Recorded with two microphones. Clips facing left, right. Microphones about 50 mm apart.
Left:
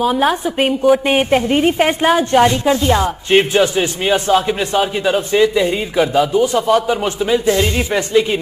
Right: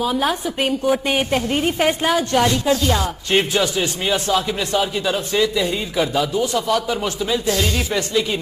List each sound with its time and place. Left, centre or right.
0.2 s a woman's voice: centre
1.0 s a woman's voice: left